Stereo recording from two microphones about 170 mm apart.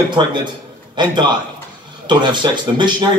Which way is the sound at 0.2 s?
25° right (ahead or behind).